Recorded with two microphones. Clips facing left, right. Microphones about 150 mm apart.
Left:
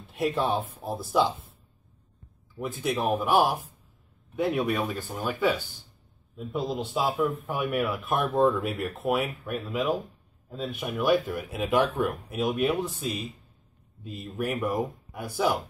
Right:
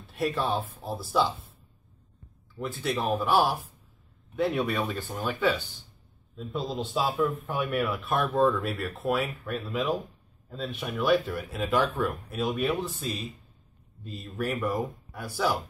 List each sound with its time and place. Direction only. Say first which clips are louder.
0.0 s speech: left 2 dB; 20° left (ahead or behind)
2.6 s a man's voice: left 2 dB; 15° left (ahead or behind)